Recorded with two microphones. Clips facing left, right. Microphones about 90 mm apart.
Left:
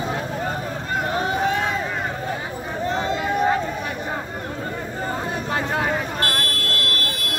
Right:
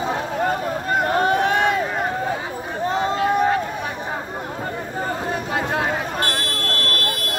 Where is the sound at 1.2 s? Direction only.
60° right (ahead or behind).